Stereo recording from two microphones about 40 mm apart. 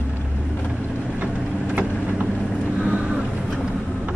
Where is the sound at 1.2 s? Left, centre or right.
Right.